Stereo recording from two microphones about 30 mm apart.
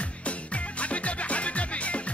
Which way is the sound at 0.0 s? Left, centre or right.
Left.